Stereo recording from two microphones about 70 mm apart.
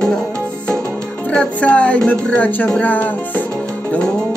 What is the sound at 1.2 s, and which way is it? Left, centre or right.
Music, centre.